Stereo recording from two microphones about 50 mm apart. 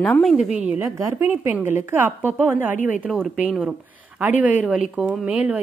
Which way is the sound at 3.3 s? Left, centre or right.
Centre.